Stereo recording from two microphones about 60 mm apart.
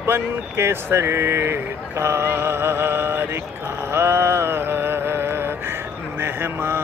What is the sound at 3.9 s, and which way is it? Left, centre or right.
Music, right.